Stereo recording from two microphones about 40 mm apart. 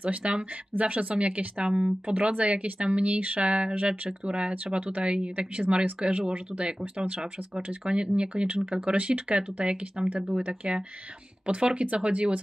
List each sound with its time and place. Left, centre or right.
0.0 s speech: right
2.1 s speech: right
4.3 s speech: right
4.7 s speech: right
8.9 s speech: right
9.3 s speech: right